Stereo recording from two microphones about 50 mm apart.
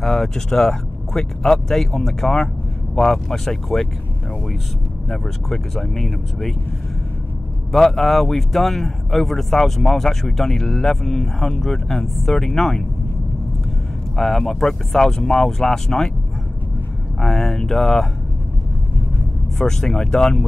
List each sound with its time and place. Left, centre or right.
0.0 s speech: centre
5.1 s speech: centre
7.7 s speech: centre
14.1 s speech: centre
17.2 s speech: centre
19.6 s speech: centre